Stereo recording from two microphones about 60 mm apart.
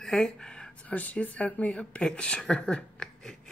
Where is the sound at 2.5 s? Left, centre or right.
Centre.